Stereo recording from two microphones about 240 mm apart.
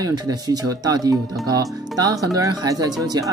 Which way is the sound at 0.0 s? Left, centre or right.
Centre.